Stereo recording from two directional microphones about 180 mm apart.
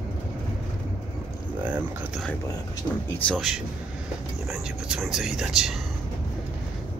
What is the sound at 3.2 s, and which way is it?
Speech, centre (ahead or behind).